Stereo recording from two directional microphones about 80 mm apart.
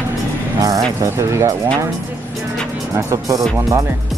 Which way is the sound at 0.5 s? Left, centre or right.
Right.